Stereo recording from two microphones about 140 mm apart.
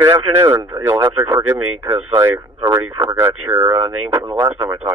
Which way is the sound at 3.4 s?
25° right (ahead or behind).